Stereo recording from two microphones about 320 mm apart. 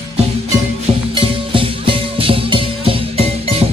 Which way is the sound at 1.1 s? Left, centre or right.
Centre.